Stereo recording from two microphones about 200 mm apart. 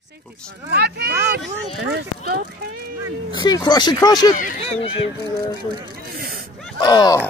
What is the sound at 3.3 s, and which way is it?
Speech, 20° left (ahead or behind).